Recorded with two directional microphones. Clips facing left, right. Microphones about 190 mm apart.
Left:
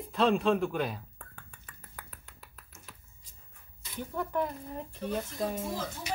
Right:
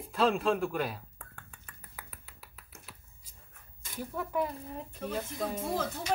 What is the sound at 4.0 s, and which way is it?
Speech, 5° right (ahead or behind).